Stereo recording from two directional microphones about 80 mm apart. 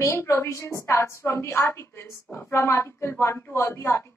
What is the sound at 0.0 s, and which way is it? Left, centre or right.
A woman's voice, left.